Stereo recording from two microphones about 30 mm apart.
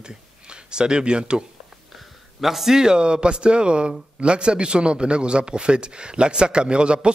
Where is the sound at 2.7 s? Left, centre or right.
Right.